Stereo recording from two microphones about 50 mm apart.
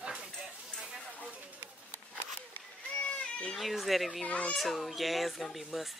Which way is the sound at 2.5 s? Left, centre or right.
Left.